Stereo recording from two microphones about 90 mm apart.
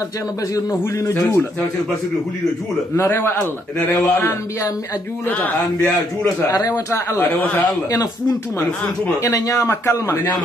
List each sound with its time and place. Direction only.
0.7 s a man's voice: 35° left (ahead or behind)
3.0 s a man's voice: 25° left (ahead or behind)
6.4 s a man's voice: 40° left (ahead or behind)
6.9 s a man's voice: 25° left (ahead or behind)
7.9 s a man's voice: 40° left (ahead or behind)